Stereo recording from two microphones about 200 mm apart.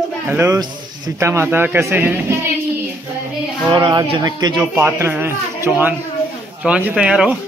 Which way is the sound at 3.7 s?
20° right (ahead or behind).